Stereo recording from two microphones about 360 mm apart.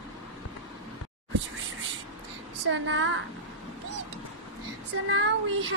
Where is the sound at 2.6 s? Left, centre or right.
Right.